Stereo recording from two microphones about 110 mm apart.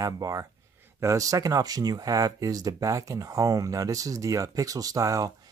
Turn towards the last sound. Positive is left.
turn(degrees=-30)  # may be behind; listen again after turning